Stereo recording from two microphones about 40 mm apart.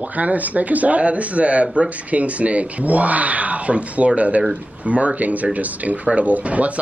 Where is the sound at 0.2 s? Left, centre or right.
Right.